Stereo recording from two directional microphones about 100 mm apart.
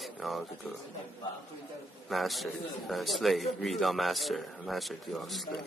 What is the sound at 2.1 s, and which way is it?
A man's voice, centre (ahead or behind).